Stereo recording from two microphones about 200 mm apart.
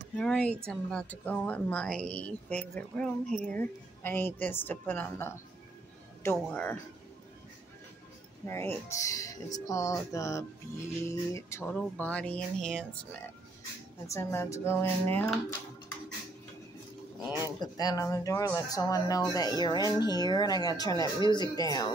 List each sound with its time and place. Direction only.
0.2 s a woman's voice: 5° left (ahead or behind)
6.3 s speech: 10° left (ahead or behind)
8.5 s a woman's voice: 10° left (ahead or behind)
14.0 s speech: 15° left (ahead or behind)
17.6 s speech: 20° left (ahead or behind)